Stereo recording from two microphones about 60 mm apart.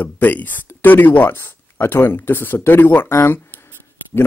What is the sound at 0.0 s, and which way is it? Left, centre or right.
Speech, left.